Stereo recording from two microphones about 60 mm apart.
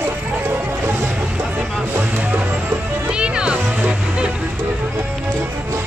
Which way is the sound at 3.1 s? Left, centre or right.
Centre.